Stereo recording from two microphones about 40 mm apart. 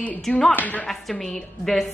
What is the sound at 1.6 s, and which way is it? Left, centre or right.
Speech, centre.